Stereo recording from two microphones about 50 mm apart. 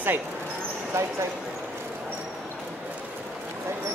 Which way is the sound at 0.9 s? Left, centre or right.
Right.